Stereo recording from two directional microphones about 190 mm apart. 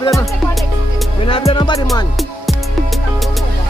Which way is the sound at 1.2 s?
25° left (ahead or behind).